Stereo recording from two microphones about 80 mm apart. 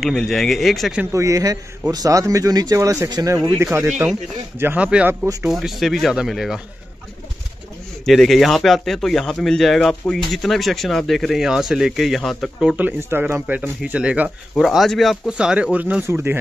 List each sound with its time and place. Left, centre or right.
0.0 s speech: centre
1.1 s a man's voice: right
2.8 s a man's voice: right
3.5 s speech: right
4.7 s speech: centre
5.5 s speech: centre
8.0 s speech: centre
12.7 s speech: right
14.6 s speech: centre
15.2 s speech: centre
16.1 s speech: right